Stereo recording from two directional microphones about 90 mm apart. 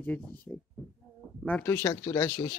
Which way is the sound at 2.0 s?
45° left (ahead or behind).